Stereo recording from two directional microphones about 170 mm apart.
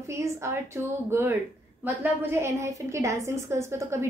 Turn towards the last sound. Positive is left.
turn(degrees=-15)  # may be behind; listen again after turning